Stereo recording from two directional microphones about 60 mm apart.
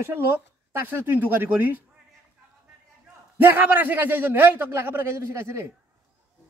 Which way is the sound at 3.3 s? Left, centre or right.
Right.